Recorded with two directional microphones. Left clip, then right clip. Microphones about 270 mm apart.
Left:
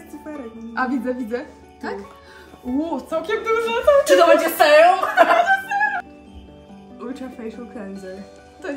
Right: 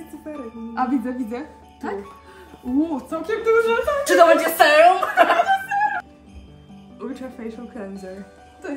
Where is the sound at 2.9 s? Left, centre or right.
Centre.